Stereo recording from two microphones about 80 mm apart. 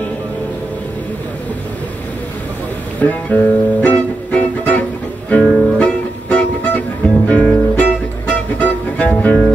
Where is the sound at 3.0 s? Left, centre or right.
Left.